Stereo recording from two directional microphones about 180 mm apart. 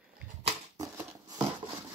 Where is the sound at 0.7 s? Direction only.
20° right (ahead or behind).